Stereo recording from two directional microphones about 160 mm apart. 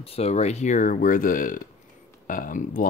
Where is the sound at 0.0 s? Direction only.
40° left (ahead or behind).